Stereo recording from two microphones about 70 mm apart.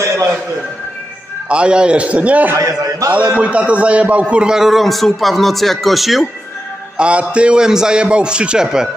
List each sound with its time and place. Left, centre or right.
0.0 s a sound: right
1.5 s a man's voice: centre
2.6 s a man's voice: right
3.3 s a man's voice: centre
7.0 s a man's voice: centre